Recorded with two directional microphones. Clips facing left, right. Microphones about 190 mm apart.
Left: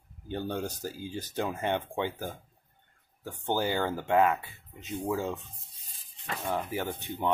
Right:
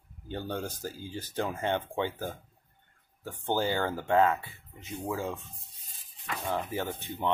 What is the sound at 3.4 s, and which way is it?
Speech, 15° left (ahead or behind).